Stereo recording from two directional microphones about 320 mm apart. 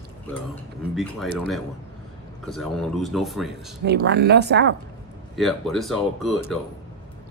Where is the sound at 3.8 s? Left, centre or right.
Right.